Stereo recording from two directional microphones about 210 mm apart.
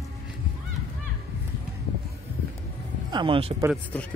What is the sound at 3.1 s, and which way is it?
Speech, 25° right (ahead or behind).